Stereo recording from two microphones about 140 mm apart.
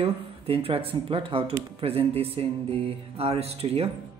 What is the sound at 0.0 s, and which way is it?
Speech, 45° right (ahead or behind).